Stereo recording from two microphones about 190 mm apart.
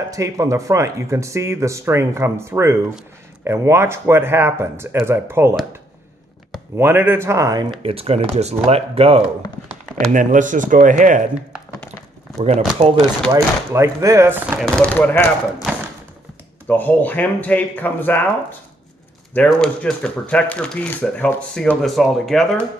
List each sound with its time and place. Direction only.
0.1 s speech: 15° right (ahead or behind)
6.8 s speech: 10° right (ahead or behind); by 9.2 s 30° right (ahead or behind)
10.1 s speech: 40° right (ahead or behind)
12.4 s speech: 35° right (ahead or behind)
13.3 s speech: 15° right (ahead or behind)
14.6 s speech: 5° left (ahead or behind)
16.6 s speech: 10° left (ahead or behind)
19.3 s speech: 5° left (ahead or behind)